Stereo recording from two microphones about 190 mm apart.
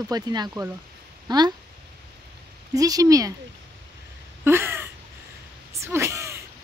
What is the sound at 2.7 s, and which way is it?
Speech, 20° right (ahead or behind).